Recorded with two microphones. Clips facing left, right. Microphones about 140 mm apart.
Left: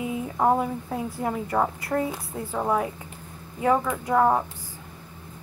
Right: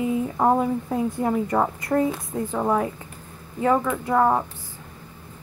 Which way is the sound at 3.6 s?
5° left (ahead or behind).